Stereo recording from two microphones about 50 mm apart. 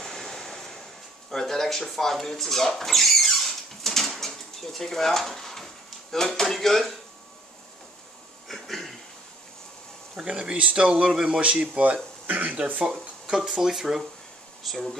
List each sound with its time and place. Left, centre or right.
0.0 s waves: centre
1.3 s speech: centre
8.5 s a sound: centre
10.1 s speech: centre
13.4 s speech: centre